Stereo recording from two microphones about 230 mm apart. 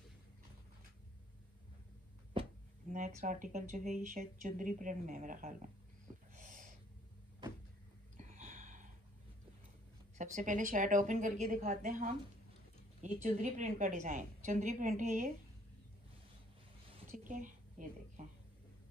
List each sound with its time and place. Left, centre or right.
3.2 s speech: right
6.3 s snort: right
8.2 s a sound: right
10.1 s speech: right
17.1 s a woman's voice: right